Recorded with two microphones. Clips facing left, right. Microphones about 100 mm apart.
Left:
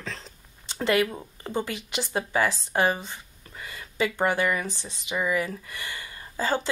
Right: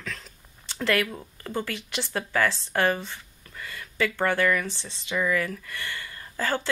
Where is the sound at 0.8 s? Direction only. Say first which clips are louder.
Left 2 dB; 20° left (ahead or behind).